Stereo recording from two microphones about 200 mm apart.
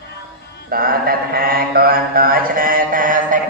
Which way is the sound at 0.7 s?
45° right (ahead or behind).